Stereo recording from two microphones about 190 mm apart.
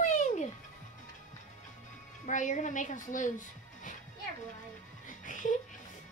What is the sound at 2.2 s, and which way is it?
A woman's voice, 40° left (ahead or behind).